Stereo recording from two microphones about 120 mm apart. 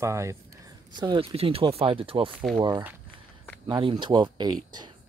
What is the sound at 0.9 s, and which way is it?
Speech, 40° right (ahead or behind).